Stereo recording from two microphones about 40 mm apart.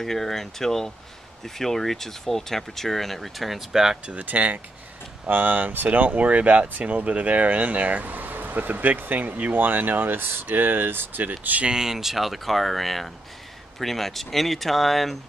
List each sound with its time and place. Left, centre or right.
0.0 s speech: centre
4.1 s speech: right
5.3 s speech: right
5.9 s speech: right
11.6 s speech: centre